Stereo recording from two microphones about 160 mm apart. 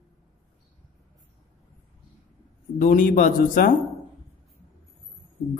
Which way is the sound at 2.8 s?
55° left (ahead or behind).